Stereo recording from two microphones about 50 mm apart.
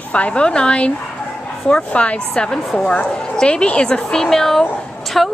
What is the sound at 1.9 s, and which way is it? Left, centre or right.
A woman's voice, left.